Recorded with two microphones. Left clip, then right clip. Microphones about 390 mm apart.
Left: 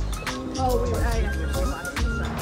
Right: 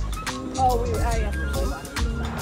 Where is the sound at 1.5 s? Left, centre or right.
Centre.